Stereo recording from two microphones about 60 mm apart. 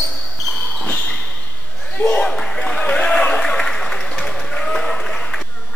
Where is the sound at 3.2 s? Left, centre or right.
Centre.